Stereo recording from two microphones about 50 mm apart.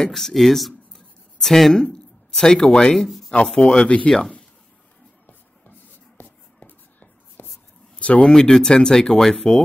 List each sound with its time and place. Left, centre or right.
0.0 s speech: centre; by 4.1 s left
5.2 s shuffle: left
6.2 s shuffle: left
7.4 s a sound: left
7.9 s a sound: left
8.2 s speech: centre